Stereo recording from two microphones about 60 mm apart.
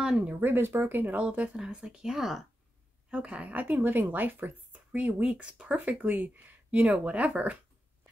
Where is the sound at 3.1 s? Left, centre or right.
Centre.